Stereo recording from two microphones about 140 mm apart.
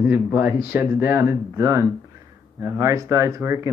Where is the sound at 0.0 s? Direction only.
10° right (ahead or behind).